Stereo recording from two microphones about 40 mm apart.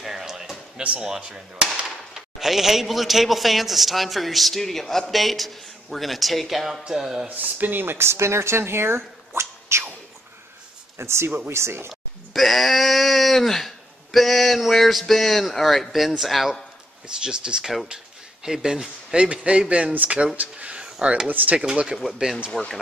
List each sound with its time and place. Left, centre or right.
0.0 s music: centre
0.7 s speech: right
2.1 s a man's voice: centre
7.2 s speech: right
7.8 s speech: right
11.0 s speech: right
11.9 s a man's voice: centre
17.2 s speech: centre
19.1 s speech: right
19.9 s speech: right
20.3 s a sound: right
21.3 s speech: right
21.9 s speech: centre